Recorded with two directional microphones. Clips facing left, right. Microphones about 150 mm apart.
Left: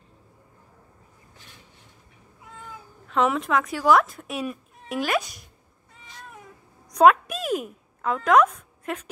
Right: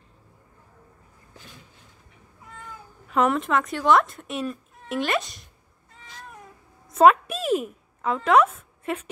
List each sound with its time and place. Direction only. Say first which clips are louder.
3.1 s speech: right 1 dB; centre (ahead or behind)
6.9 s a woman's voice: even; 5° right (ahead or behind)